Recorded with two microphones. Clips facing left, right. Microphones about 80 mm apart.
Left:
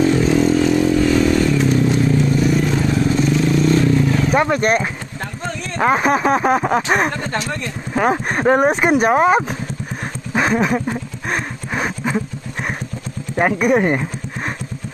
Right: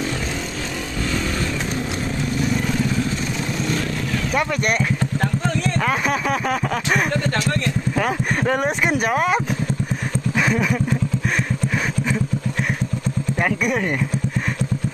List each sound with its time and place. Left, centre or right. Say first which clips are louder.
4.3 s speech: left 3 dB; left
10.3 s a sound: left 4 dB; left
13.4 s speech: left 7 dB; left